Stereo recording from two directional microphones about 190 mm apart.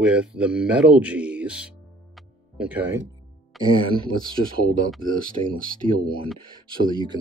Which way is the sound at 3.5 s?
Centre (ahead or behind).